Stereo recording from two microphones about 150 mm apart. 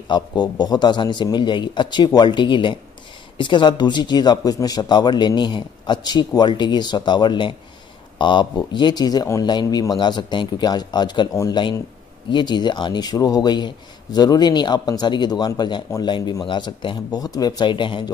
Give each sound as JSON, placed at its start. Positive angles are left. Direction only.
{"t": 0.1, "sound": "a man's voice", "side_deg": 30}